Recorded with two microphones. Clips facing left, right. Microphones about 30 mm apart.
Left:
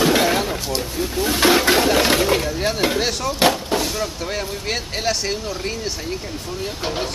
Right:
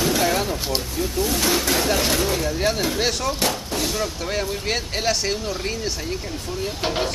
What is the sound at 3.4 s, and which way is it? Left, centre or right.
Speech, left.